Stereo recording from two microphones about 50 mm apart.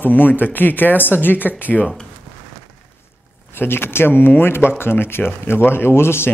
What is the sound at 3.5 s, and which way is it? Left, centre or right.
Speech, left.